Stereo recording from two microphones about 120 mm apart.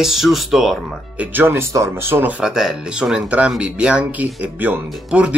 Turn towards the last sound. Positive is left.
turn(degrees=-10)  # may be behind; listen again after turning